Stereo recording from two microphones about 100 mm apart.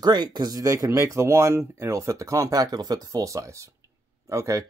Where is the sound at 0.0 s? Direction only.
45° right (ahead or behind).